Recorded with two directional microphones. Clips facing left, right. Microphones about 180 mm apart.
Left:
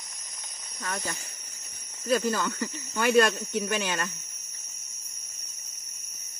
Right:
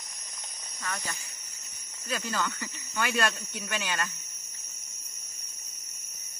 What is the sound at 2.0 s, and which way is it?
Speech, 45° left (ahead or behind).